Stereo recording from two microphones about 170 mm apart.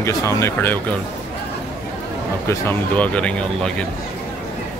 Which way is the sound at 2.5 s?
10° left (ahead or behind).